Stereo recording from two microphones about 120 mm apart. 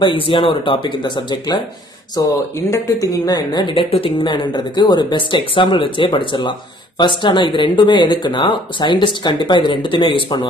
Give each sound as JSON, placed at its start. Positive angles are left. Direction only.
{"t": 0.0, "sound": "a woman's voice", "side_deg": 45}